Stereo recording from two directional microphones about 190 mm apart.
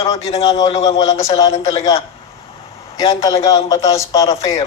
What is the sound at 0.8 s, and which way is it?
Speech, 20° left (ahead or behind).